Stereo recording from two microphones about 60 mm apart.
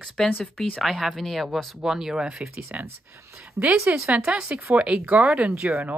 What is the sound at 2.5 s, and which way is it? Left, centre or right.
Speech, right.